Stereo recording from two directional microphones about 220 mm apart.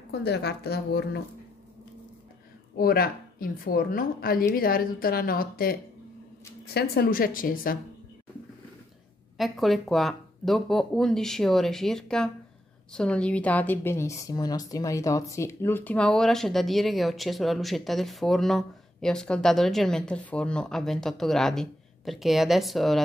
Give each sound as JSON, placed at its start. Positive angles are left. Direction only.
{"t": 0.1, "sound": "a woman's voice", "side_deg": 50}
{"t": 2.8, "sound": "a woman's voice", "side_deg": 40}
{"t": 9.4, "sound": "a woman's voice", "side_deg": 0}